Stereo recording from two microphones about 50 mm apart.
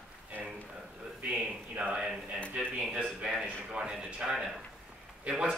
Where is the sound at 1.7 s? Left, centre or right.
Centre.